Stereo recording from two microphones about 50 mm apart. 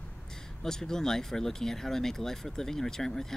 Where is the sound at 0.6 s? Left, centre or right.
Centre.